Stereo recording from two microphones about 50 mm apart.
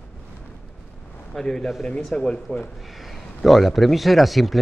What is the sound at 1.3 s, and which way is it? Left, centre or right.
Speech, centre.